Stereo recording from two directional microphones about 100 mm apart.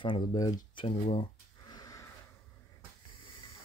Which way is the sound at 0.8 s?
90° left.